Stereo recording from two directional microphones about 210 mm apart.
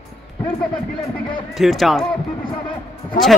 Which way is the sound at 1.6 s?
Centre (ahead or behind).